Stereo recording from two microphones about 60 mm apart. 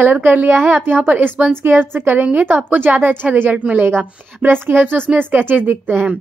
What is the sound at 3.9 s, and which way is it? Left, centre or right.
A woman's voice, right.